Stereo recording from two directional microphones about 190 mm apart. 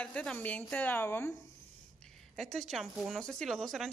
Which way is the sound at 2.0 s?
Centre (ahead or behind).